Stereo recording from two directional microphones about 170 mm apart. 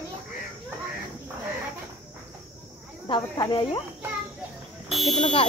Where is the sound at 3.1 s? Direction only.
25° left (ahead or behind).